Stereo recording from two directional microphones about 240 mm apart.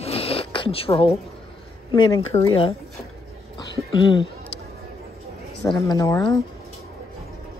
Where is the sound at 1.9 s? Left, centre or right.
Centre.